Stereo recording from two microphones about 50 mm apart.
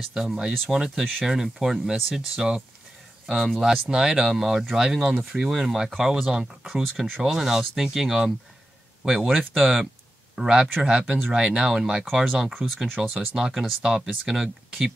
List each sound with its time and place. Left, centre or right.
0.1 s speech: centre
3.9 s speech: centre
12.7 s speech: centre